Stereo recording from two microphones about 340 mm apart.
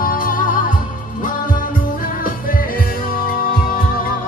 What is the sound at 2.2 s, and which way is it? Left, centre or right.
Music, left.